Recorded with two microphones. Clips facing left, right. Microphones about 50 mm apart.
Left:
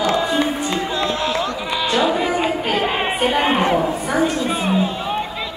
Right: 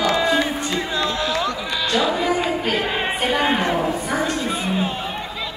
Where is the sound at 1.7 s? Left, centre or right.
Left.